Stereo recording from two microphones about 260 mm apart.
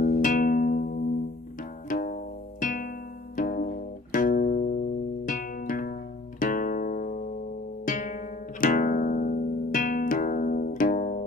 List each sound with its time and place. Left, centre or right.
0.0 s music: left